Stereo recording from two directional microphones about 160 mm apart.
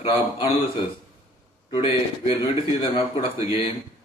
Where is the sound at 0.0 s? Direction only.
30° left (ahead or behind).